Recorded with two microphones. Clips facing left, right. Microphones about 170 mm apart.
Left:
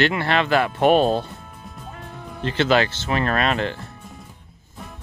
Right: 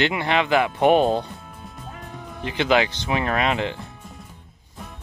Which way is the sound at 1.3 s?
Centre (ahead or behind).